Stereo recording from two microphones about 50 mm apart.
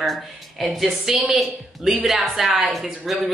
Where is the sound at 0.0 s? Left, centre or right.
Centre.